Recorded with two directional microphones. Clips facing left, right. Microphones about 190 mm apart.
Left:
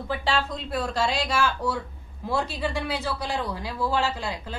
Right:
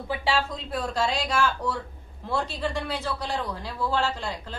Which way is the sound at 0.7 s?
Centre (ahead or behind).